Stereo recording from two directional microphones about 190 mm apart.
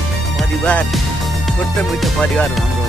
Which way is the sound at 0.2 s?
Centre (ahead or behind).